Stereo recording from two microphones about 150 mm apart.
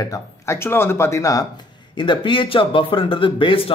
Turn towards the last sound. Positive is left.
turn(degrees=35)  # may be behind; listen again after turning